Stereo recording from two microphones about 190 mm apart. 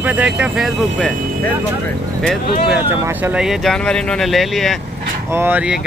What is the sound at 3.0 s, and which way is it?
Speech, 5° right (ahead or behind).